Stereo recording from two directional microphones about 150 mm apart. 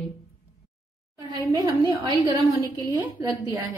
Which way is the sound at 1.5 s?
25° right (ahead or behind).